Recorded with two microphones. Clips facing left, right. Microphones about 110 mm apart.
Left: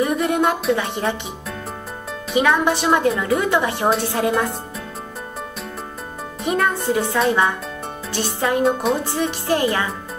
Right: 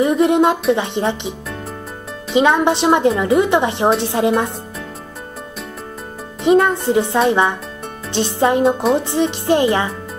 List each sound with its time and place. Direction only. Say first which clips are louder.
0.0 s a woman's voice: right 5 dB; 25° right (ahead or behind)
2.3 s a woman's voice: right 4 dB; 25° right (ahead or behind)
6.4 s a woman's voice: right 7 dB; 25° right (ahead or behind)